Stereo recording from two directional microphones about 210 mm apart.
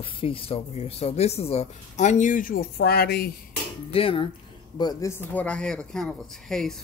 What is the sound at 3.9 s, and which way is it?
A man's voice, 25° left (ahead or behind).